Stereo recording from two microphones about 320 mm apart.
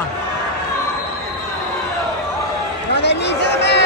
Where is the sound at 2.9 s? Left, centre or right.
Left.